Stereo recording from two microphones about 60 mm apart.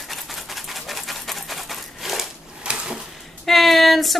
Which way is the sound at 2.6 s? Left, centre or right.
Centre.